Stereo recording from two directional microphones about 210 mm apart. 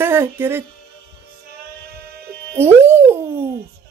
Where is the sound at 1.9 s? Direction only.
50° right (ahead or behind).